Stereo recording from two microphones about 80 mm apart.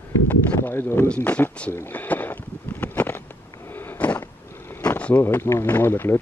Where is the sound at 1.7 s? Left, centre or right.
Left.